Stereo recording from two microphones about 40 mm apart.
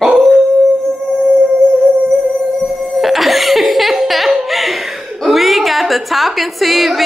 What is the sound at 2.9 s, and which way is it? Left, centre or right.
Laughter, centre.